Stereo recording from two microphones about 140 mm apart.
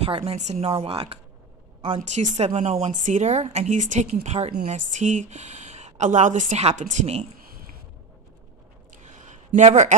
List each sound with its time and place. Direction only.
0.0 s a woman's voice: 45° right (ahead or behind)
2.0 s speech: 60° right (ahead or behind)
9.0 s a sound: 60° right (ahead or behind)